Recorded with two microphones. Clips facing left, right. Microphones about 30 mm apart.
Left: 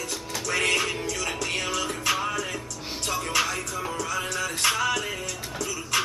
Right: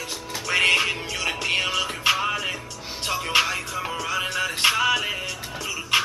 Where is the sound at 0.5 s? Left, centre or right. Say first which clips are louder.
Right 5 dB; right.